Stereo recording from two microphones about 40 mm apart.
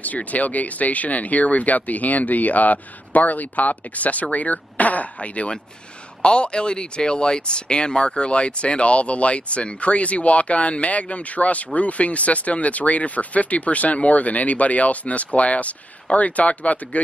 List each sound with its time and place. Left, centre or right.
0.0 s speech: left